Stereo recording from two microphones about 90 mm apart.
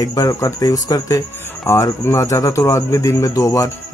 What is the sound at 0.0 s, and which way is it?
Speech, 40° left (ahead or behind).